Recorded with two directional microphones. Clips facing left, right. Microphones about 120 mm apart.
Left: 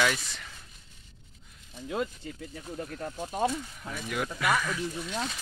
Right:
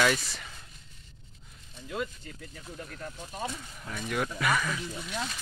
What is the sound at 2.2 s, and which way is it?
Speech, 15° left (ahead or behind).